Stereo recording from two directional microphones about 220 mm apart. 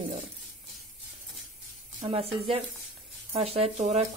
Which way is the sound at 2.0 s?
25° right (ahead or behind).